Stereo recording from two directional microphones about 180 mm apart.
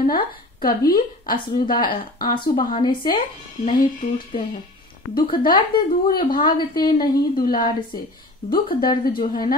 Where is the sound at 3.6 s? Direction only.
50° left (ahead or behind).